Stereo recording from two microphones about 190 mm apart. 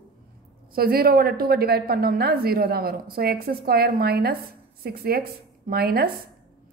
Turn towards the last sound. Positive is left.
turn(degrees=-55)  # may be behind; listen again after turning